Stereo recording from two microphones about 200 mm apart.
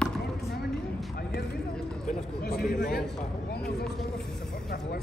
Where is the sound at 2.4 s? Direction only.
50° left (ahead or behind).